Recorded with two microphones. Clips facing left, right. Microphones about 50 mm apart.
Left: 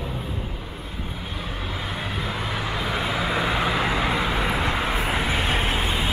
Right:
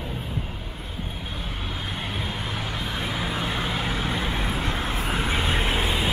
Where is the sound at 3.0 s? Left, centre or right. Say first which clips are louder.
Left 4 dB; left.